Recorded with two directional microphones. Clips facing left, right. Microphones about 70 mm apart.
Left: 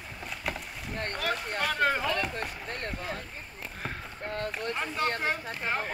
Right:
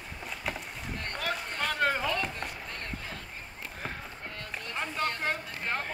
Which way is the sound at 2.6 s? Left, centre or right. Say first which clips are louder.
Left 4 dB; left.